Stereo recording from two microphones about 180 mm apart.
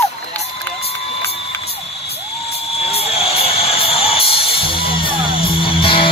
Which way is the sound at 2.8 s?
35° left (ahead or behind).